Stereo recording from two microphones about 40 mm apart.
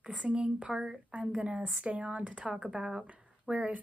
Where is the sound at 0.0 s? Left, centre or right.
Right.